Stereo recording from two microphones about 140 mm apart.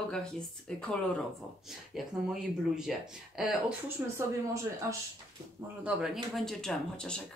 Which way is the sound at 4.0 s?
15° right (ahead or behind).